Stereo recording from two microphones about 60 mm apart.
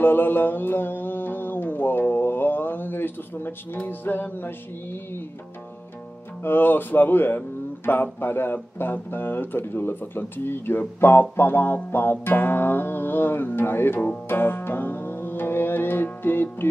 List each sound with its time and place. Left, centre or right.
0.0 s speech: left
6.4 s speech: left
14.3 s music: left